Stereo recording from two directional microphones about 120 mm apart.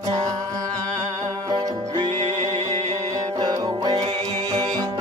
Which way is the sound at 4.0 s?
60° right (ahead or behind).